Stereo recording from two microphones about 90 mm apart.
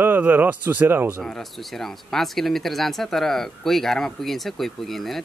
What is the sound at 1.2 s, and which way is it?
Speech, 5° left (ahead or behind).